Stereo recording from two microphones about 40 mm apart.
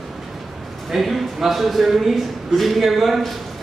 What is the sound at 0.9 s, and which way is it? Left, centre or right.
Speech, centre.